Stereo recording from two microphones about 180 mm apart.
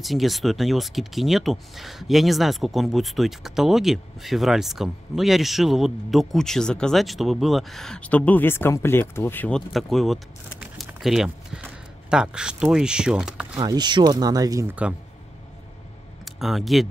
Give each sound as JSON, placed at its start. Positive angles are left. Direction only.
{"t": 0.0, "sound": "speech", "side_deg": 0}
{"t": 13.6, "sound": "speech", "side_deg": -20}
{"t": 16.3, "sound": "speech", "side_deg": 0}